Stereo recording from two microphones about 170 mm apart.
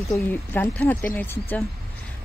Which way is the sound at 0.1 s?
10° left (ahead or behind).